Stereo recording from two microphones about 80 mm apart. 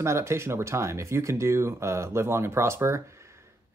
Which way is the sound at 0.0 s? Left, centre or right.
Right.